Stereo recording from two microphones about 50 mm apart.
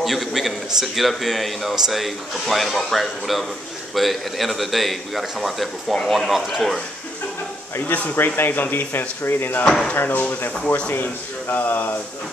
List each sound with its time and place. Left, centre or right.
0.0 s speech: centre
7.9 s speech: left
9.7 s speech: centre
9.9 s speech: left